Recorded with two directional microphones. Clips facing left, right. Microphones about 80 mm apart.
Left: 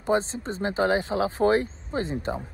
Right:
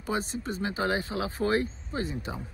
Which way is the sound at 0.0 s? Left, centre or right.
Left.